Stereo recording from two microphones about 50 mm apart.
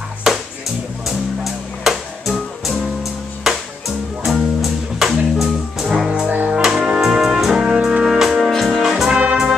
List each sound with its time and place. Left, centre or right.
0.3 s music: centre
6.0 s music: right
7.1 s brass instrument: centre
8.0 s music: centre
8.4 s music: centre
8.8 s brass instrument: centre